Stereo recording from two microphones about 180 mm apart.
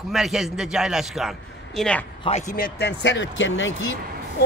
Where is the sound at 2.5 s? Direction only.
55° left (ahead or behind); by 3.9 s 90° left.